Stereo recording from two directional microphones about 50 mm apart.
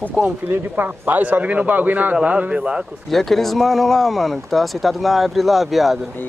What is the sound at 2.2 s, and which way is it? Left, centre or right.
Speech, right.